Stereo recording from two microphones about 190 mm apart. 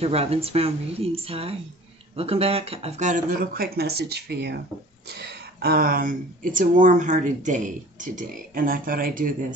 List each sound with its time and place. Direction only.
0.0 s speech: 30° right (ahead or behind); by 9.3 s 45° right (ahead or behind)